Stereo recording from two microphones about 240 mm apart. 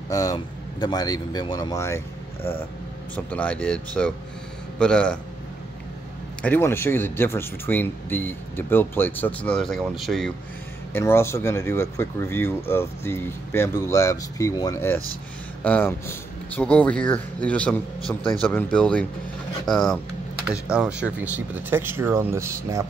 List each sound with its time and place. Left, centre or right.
0.1 s speech: centre
6.4 s speech: centre